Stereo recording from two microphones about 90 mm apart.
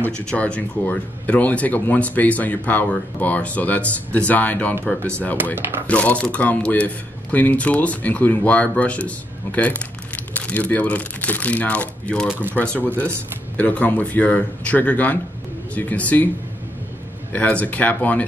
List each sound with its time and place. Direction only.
0.2 s speech: 10° left (ahead or behind)
5.9 s speech: 15° left (ahead or behind)
17.3 s speech: 15° left (ahead or behind)